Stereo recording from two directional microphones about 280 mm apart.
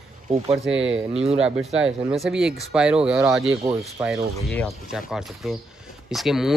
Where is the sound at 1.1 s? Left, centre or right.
Right.